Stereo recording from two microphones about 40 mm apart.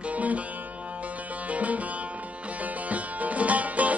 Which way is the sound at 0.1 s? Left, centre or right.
Right.